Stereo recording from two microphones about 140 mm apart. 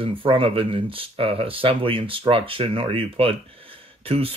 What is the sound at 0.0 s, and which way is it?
Speech, 40° right (ahead or behind).